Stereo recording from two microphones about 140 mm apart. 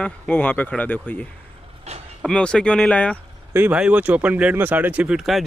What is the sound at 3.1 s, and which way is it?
Speech, 15° right (ahead or behind).